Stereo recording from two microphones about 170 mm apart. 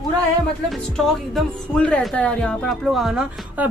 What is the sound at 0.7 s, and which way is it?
A woman's voice, centre (ahead or behind).